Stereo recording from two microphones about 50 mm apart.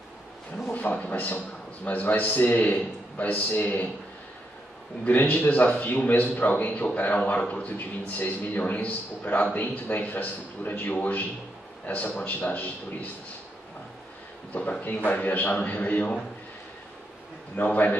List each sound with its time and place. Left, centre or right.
0.9 s a man's voice: left
5.0 s a man's voice: left
14.5 s a man's voice: left
15.2 s a man's voice: left
17.6 s a man's voice: left